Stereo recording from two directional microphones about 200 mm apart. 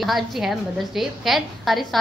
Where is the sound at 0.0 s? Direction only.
Centre (ahead or behind).